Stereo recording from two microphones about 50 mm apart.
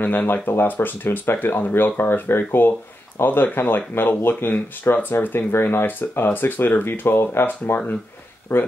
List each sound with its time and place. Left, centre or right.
0.0 s speech: left
8.5 s speech: left